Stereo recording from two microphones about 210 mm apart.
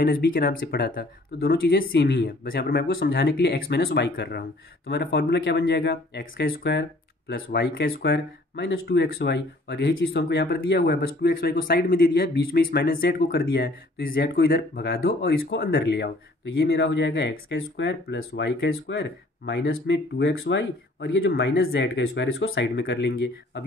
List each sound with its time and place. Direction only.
0.0 s speech: 45° left (ahead or behind); by 21.3 s 65° left (ahead or behind)
21.3 s speech: 50° left (ahead or behind)